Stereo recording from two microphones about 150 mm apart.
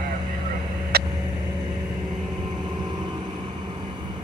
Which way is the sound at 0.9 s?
90° right.